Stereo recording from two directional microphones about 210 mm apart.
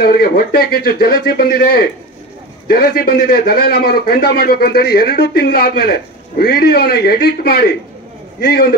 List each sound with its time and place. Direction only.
0.0 s a man's voice: 45° left (ahead or behind)